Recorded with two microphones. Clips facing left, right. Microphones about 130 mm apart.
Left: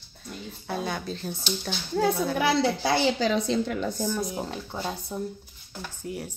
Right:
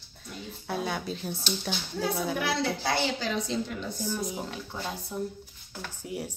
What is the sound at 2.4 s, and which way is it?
A woman's voice, 90° left.